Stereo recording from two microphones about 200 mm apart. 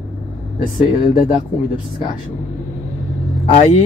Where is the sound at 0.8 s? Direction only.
25° left (ahead or behind).